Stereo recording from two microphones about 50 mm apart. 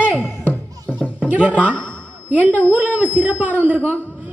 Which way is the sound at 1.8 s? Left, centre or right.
Left.